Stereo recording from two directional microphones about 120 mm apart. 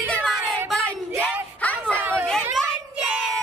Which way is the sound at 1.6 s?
10° left (ahead or behind).